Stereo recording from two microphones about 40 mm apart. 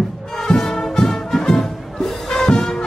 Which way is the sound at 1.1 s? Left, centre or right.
Centre.